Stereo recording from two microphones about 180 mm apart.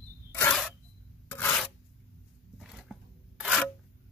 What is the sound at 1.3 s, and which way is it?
Rub, 10° left (ahead or behind).